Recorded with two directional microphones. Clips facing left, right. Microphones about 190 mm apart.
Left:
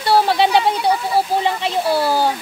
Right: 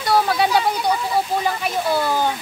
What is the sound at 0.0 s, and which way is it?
Speech, 30° left (ahead or behind).